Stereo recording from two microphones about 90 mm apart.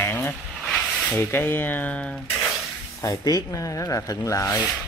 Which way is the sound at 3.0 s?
40° left (ahead or behind).